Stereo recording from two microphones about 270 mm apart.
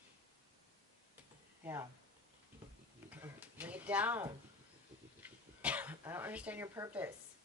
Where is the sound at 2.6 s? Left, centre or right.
Centre.